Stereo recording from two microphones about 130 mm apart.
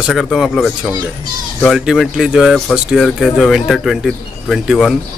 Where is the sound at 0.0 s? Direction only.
Centre (ahead or behind).